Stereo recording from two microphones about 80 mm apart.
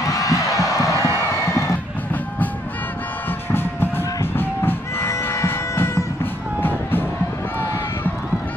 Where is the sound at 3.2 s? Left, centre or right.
Left.